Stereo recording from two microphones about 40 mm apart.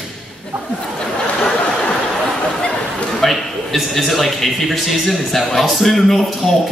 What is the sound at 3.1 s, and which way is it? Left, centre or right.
A man's voice, centre.